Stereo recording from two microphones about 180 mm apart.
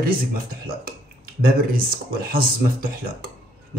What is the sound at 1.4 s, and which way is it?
Speech, 55° right (ahead or behind).